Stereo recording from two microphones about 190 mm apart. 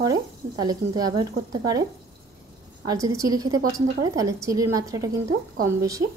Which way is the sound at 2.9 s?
15° right (ahead or behind).